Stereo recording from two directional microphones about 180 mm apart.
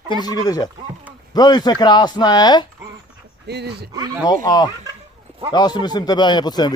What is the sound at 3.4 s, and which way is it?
Speech, 65° right (ahead or behind).